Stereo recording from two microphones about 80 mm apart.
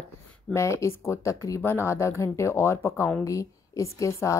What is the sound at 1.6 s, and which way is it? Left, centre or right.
A woman's voice, left.